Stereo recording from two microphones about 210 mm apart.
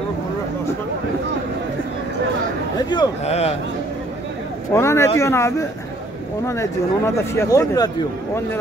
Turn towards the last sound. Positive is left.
turn(degrees=15)  # may be behind; listen again after turning